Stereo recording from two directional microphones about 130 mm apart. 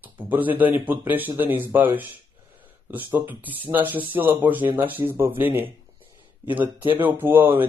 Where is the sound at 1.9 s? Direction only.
15° right (ahead or behind).